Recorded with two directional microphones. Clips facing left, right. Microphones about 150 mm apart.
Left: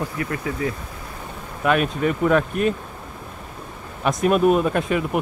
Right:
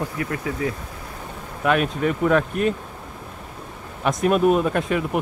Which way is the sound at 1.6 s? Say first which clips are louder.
Left 1 dB; 5° left (ahead or behind).